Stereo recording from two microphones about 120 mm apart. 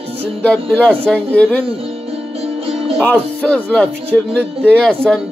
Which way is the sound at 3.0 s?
10° left (ahead or behind).